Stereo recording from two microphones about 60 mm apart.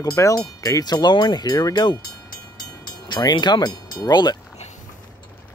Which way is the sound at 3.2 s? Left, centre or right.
Left.